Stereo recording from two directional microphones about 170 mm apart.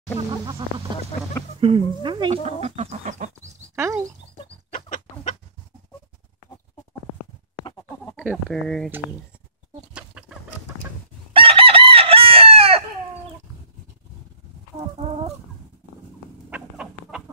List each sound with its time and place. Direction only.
0.5 s music: 30° right (ahead or behind)
1.6 s speech: 30° right (ahead or behind)
3.7 s speech: 15° right (ahead or behind)
4.7 s chicken: 50° left (ahead or behind)
8.5 s speech: centre (ahead or behind)
11.3 s chicken: 30° right (ahead or behind)
15.0 s fowl: 35° right (ahead or behind)
16.4 s chicken: 5° right (ahead or behind)